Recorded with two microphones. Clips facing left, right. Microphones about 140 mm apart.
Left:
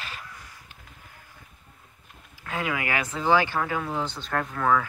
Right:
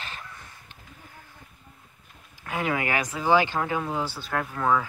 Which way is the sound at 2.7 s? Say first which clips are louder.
Right 3 dB; 25° right (ahead or behind).